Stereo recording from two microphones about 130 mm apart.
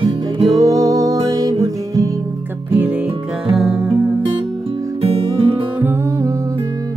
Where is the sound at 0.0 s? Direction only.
35° right (ahead or behind).